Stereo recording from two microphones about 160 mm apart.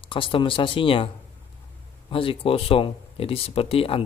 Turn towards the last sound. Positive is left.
turn(degrees=35)  # may be behind; listen again after turning